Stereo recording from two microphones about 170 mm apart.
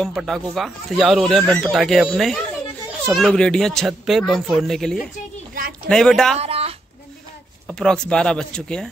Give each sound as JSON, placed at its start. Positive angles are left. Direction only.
{"t": 0.0, "sound": "speech", "side_deg": 0}
{"t": 6.3, "sound": "a sound", "side_deg": -35}
{"t": 7.8, "sound": "speech", "side_deg": 5}